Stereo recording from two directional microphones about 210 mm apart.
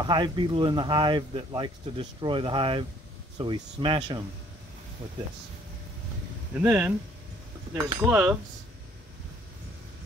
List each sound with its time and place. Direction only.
0.0 s speech: 20° right (ahead or behind)
6.5 s speech: 10° right (ahead or behind)